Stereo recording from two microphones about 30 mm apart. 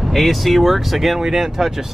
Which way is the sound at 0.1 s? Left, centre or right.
Centre.